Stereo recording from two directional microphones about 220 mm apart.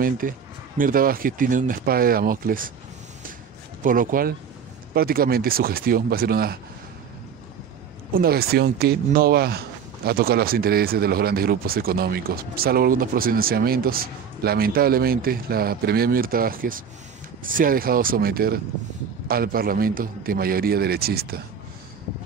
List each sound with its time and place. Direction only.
0.0 s speech: 40° right (ahead or behind)
3.8 s speech: 40° right (ahead or behind)
8.1 s speech: 45° right (ahead or behind)